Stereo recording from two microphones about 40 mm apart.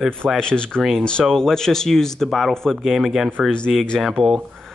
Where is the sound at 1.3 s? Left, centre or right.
Centre.